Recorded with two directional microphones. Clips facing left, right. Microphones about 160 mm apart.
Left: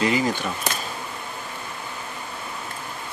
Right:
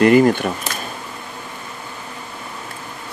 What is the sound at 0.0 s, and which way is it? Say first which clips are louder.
Speech: right 10 dB; 55° right (ahead or behind).